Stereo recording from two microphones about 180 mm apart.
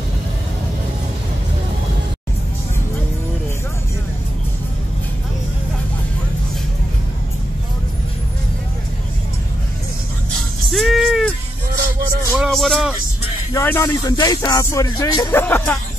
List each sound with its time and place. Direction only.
10.7 s music: centre (ahead or behind)
12.4 s music: centre (ahead or behind)
13.5 s speech: 15° left (ahead or behind)